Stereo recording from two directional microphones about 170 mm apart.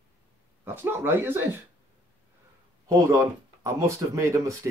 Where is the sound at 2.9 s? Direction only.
20° right (ahead or behind).